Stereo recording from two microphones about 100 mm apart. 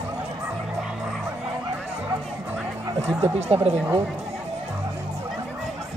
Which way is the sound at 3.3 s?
90° right.